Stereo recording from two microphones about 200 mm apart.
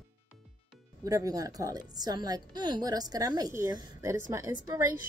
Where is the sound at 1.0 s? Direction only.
15° right (ahead or behind).